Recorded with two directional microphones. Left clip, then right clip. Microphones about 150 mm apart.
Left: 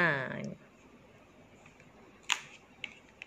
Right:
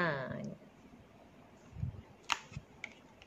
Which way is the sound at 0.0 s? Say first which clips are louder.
Left 6 dB; 25° left (ahead or behind).